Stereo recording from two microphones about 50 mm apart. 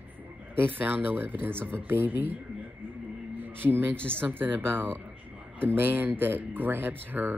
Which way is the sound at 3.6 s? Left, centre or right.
Right.